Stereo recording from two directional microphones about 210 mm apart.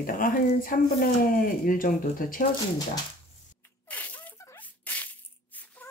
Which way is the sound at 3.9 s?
5° left (ahead or behind).